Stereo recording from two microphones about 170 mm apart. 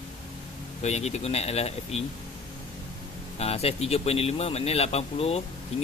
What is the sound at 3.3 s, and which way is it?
Speech, 35° left (ahead or behind).